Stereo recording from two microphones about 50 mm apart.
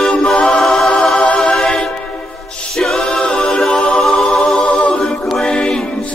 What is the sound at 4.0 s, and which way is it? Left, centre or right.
Music, centre.